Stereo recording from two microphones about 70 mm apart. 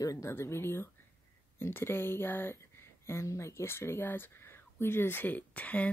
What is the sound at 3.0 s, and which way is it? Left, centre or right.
Speech, left.